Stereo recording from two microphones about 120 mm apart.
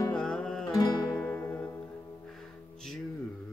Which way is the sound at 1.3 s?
20° left (ahead or behind).